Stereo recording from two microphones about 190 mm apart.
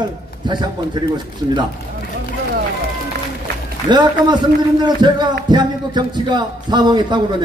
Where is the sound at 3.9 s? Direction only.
25° right (ahead or behind).